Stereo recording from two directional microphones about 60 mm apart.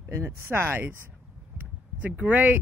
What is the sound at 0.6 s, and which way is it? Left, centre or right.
Speech, right.